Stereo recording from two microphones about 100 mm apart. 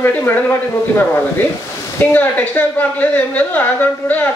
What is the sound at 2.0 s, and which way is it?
A woman's voice, 15° left (ahead or behind).